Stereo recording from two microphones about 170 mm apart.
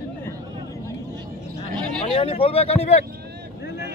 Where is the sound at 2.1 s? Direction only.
35° left (ahead or behind).